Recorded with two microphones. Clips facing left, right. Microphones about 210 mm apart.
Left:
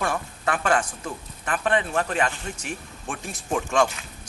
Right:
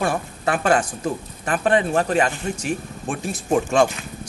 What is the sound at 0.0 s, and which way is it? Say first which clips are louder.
A man's voice: right 4 dB; 30° right (ahead or behind).